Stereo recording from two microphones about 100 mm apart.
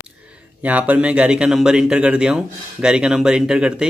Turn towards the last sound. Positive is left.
turn(degrees=-5)  # may be behind; listen again after turning